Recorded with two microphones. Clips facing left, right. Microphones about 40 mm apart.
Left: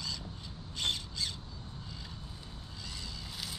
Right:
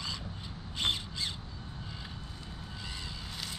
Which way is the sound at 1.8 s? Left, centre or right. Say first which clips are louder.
Right 2 dB; right.